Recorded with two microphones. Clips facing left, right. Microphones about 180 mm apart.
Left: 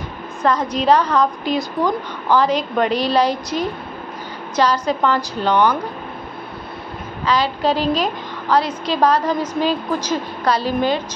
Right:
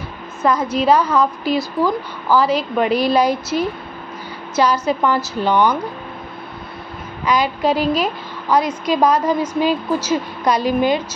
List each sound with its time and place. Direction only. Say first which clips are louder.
0.4 s a woman's voice: right 1 dB; 10° right (ahead or behind)
4.6 s a woman's voice: right 1 dB; 10° right (ahead or behind)
7.2 s a woman's voice: right 1 dB; 10° right (ahead or behind)